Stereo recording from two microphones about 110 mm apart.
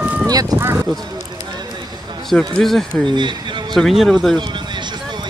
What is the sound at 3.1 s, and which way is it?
Speech, 45° right (ahead or behind).